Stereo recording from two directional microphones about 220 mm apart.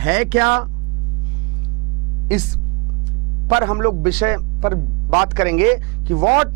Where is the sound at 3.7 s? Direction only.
20° right (ahead or behind).